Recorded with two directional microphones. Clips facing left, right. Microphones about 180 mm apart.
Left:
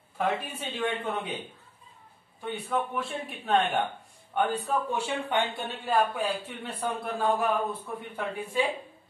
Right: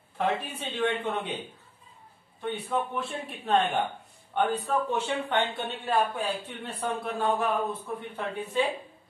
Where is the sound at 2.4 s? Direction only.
5° left (ahead or behind).